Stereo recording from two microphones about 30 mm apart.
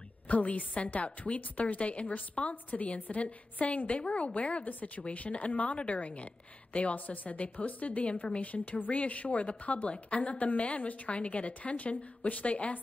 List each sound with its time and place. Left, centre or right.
0.3 s a woman's voice: left
3.6 s a woman's voice: left
4.6 s a woman's voice: left
5.0 s a woman's voice: left
8.4 s a woman's voice: left
10.6 s a woman's voice: left